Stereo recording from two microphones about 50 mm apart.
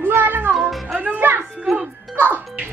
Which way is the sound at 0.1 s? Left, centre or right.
Right.